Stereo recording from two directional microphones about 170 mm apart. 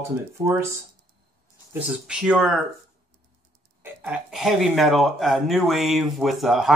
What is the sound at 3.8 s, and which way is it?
Speech, 5° right (ahead or behind).